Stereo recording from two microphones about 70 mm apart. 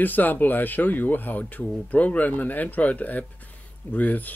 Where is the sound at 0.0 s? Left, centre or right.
Left.